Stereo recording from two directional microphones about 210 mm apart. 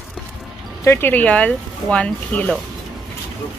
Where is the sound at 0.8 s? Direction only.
10° left (ahead or behind).